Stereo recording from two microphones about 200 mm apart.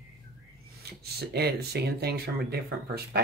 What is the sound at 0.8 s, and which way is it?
Speech, 50° right (ahead or behind).